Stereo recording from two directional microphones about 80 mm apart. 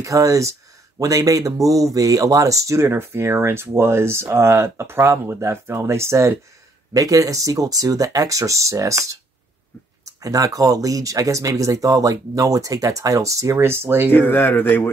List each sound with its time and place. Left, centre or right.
0.0 s speech: right
6.9 s speech: right
10.2 s speech: right
14.1 s speech: left